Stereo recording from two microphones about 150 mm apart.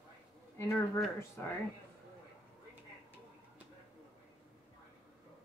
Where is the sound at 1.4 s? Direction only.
15° left (ahead or behind).